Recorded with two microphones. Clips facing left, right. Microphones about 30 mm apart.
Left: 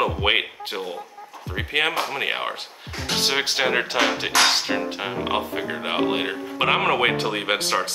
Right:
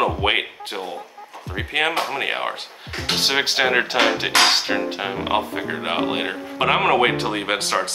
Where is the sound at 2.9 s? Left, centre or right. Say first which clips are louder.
Right 3 dB; right.